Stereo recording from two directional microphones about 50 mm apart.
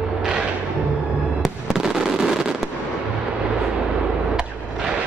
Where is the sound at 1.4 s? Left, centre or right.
Centre.